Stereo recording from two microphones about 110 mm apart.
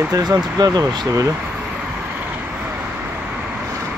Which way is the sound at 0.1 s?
35° right (ahead or behind).